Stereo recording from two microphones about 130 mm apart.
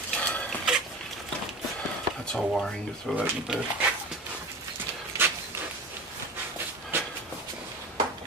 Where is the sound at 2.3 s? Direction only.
5° left (ahead or behind).